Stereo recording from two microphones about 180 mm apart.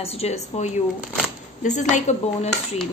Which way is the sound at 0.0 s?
35° left (ahead or behind).